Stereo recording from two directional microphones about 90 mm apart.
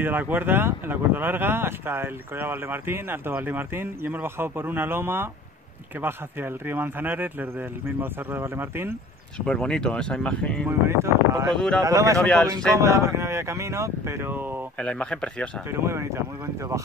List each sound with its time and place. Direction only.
0.0 s speech: 20° right (ahead or behind)
9.5 s speech: 10° left (ahead or behind)
10.7 s speech: 30° right (ahead or behind)
11.5 s speech: 5° left (ahead or behind)
11.8 s speech: 40° right (ahead or behind)
12.2 s speech: 10° left (ahead or behind)
12.7 s speech: 35° right (ahead or behind)
14.8 s speech: 10° left (ahead or behind)
15.7 s speech: 30° right (ahead or behind)